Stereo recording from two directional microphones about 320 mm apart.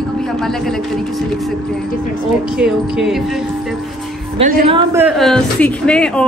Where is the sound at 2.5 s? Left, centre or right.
Centre.